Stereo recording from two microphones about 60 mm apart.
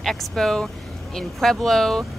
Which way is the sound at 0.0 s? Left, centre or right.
Centre.